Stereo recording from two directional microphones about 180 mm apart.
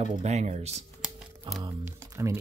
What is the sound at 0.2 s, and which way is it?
Speech, 40° right (ahead or behind).